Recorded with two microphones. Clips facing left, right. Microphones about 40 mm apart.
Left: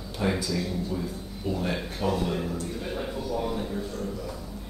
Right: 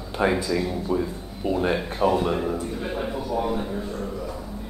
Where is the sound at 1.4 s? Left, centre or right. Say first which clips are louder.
Right 6 dB; right.